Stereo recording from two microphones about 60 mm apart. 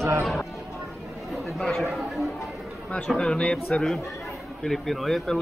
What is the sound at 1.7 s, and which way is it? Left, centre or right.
Speech, centre.